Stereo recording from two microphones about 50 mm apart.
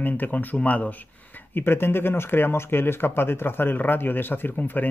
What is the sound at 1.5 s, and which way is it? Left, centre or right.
Speech, left.